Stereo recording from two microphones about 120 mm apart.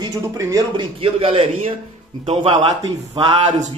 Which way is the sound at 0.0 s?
30° right (ahead or behind).